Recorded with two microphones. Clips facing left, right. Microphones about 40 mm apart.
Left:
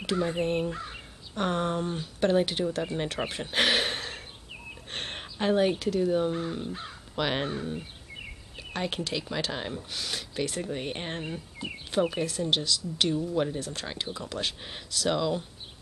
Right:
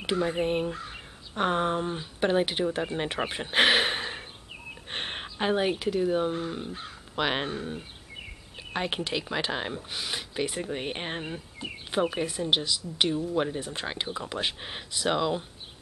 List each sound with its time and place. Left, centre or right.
0.0 s speech: centre
0.7 s crow: centre
1.3 s speech: centre